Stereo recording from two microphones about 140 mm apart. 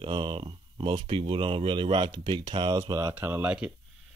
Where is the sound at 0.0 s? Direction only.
35° right (ahead or behind).